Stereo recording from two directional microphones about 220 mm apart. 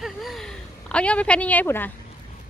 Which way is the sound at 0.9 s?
5° left (ahead or behind).